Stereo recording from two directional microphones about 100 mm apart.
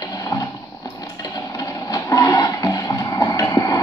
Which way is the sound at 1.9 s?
35° left (ahead or behind).